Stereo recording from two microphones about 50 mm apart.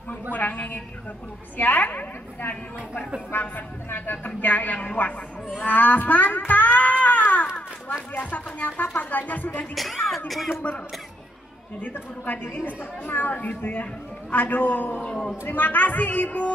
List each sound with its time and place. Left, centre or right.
0.3 s a sound: left
1.6 s a woman's voice: left
10.0 s speech: centre
11.8 s a woman's voice: left